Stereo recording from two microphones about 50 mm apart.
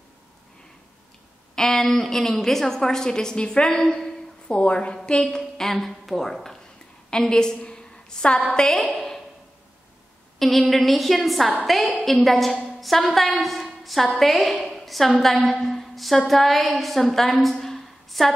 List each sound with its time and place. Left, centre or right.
1.5 s a woman's voice: centre
10.4 s a woman's voice: centre